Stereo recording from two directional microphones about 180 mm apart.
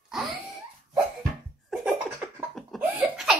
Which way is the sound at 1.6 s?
Centre (ahead or behind).